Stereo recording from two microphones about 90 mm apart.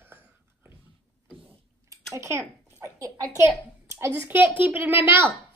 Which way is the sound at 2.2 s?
35° right (ahead or behind).